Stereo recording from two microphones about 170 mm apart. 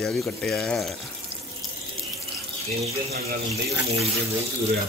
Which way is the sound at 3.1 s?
65° right (ahead or behind).